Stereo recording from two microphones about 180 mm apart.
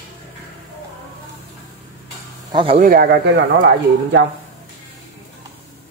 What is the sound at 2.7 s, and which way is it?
Speech, 55° right (ahead or behind).